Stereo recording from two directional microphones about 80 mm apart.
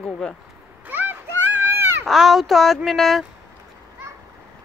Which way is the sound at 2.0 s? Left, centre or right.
Centre.